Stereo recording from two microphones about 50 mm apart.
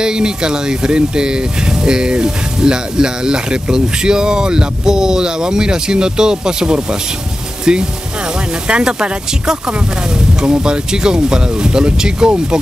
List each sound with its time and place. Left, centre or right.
0.0 s speech: centre